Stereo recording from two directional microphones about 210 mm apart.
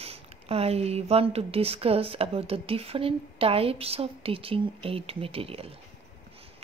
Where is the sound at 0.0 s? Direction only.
30° right (ahead or behind).